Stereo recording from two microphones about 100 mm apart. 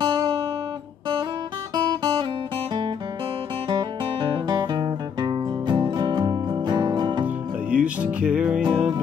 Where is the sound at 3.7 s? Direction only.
50° right (ahead or behind).